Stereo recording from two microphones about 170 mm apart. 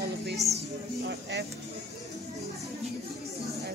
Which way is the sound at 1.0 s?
80° right.